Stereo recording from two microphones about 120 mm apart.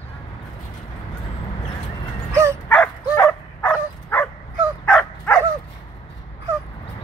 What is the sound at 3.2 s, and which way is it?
Dog, 15° left (ahead or behind).